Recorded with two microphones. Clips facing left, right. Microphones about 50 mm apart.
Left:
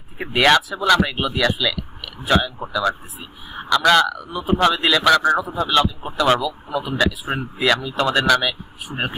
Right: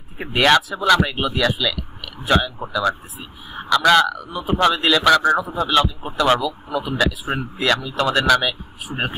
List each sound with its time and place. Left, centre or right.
0.2 s a man's voice: centre